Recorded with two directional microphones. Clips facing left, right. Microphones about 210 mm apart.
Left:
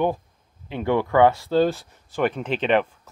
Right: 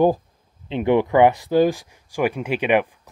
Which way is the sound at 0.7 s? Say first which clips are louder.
Right 4 dB; 20° right (ahead or behind).